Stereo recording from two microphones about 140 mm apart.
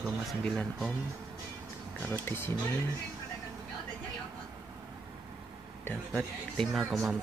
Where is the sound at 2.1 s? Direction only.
15° left (ahead or behind).